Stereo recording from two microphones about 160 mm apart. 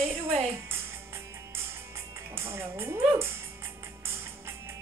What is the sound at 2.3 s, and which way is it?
Music, 15° right (ahead or behind).